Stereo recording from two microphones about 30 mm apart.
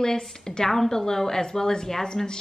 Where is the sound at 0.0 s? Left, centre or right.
Left.